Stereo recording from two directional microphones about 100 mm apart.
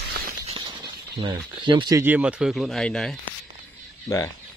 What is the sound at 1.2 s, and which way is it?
Speech, 55° right (ahead or behind).